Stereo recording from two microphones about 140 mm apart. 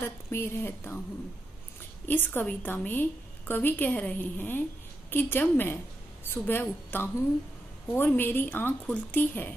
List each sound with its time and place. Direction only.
0.3 s a woman's voice: 15° left (ahead or behind)
2.0 s a woman's voice: 15° left (ahead or behind)